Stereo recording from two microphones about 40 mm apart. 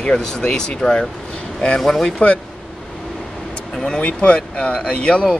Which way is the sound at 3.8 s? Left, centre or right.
Left.